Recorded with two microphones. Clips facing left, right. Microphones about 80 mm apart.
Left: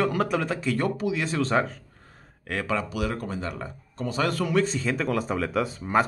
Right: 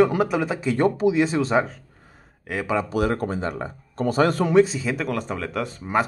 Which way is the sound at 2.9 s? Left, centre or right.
Right.